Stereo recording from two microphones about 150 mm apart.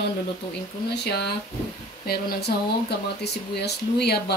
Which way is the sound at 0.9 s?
90° left.